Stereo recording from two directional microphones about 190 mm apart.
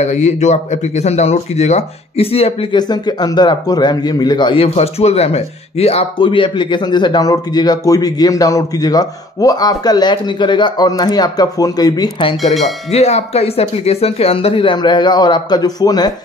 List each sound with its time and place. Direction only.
0.0 s speech: 35° left (ahead or behind); by 16.1 s 20° left (ahead or behind)